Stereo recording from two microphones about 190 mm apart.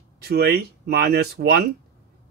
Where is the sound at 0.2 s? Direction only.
55° right (ahead or behind).